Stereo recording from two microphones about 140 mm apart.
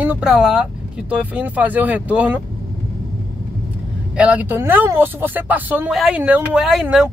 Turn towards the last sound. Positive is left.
turn(degrees=-5)  # may be behind; listen again after turning